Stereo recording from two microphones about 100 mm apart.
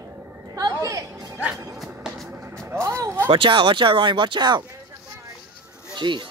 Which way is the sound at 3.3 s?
55° right (ahead or behind).